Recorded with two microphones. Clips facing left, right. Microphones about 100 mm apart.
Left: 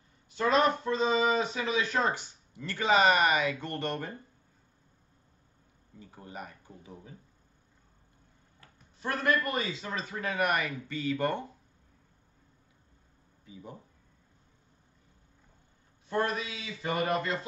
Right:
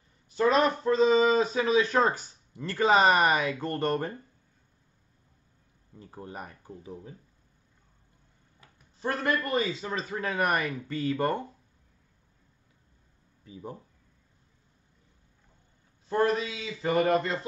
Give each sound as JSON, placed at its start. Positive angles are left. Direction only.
{"t": 0.3, "sound": "speech", "side_deg": -35}
{"t": 6.2, "sound": "speech", "side_deg": -35}
{"t": 9.0, "sound": "speech", "side_deg": -35}
{"t": 16.1, "sound": "speech", "side_deg": -30}